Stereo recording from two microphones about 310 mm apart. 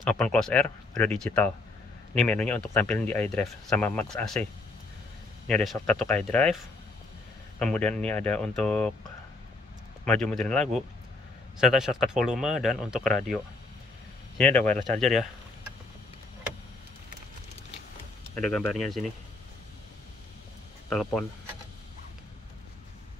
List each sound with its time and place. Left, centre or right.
0.0 s speech: centre
5.5 s speech: centre
10.0 s speech: centre
14.4 s speech: centre
18.3 s speech: centre
20.9 s speech: centre